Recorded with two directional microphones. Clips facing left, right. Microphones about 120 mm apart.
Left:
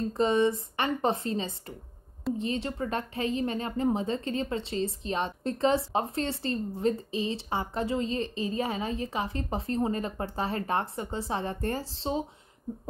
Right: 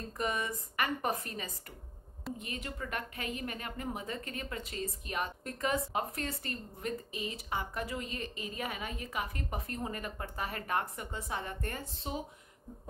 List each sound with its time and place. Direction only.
0.1 s speech: 30° left (ahead or behind)